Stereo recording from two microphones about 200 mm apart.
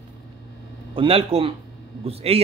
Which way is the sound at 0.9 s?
30° right (ahead or behind).